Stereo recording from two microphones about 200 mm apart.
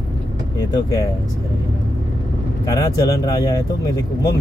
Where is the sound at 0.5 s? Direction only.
20° left (ahead or behind).